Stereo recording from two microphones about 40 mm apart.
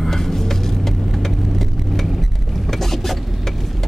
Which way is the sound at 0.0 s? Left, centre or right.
Centre.